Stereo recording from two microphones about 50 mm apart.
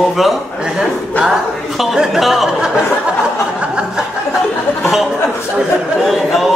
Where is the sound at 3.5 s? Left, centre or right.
Centre.